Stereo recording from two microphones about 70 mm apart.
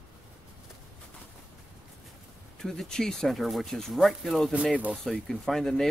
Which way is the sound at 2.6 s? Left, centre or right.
Centre.